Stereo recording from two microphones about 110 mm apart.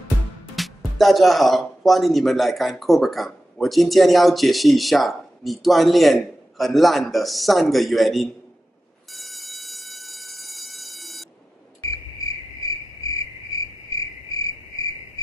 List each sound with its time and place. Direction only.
0.6 s speech: centre (ahead or behind)
9.1 s train: centre (ahead or behind)
11.9 s cricket: 30° left (ahead or behind)